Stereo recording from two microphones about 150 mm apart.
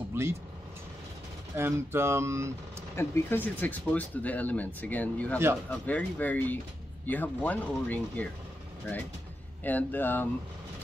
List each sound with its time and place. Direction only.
0.1 s speech: 15° right (ahead or behind)
1.6 s speech: 15° right (ahead or behind)
3.0 s speech: 15° left (ahead or behind)
9.6 s speech: 10° left (ahead or behind)